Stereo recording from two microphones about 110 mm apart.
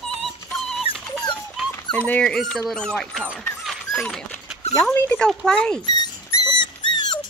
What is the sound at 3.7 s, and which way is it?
Dog, 5° left (ahead or behind).